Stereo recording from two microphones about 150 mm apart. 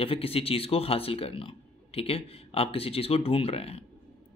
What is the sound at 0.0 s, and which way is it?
A man's voice, 40° left (ahead or behind).